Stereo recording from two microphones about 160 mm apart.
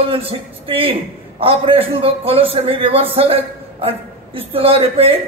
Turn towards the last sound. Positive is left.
turn(degrees=-35)  # may be behind; listen again after turning